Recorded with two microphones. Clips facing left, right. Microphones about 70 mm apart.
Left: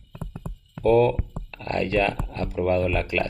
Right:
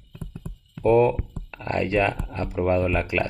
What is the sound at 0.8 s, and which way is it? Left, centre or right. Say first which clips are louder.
Speech: even; centre.